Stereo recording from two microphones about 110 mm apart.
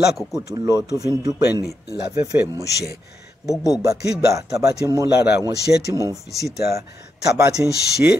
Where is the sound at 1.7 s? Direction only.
30° right (ahead or behind).